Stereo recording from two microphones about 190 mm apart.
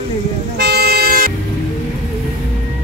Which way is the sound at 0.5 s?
60° right (ahead or behind).